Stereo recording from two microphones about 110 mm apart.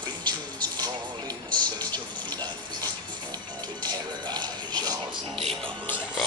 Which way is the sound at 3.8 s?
40° right (ahead or behind).